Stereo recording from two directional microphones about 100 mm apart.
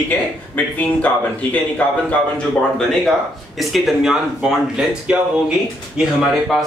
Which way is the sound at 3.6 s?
Centre (ahead or behind).